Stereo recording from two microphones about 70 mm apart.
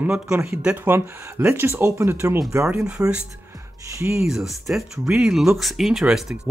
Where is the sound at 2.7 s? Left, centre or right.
Centre.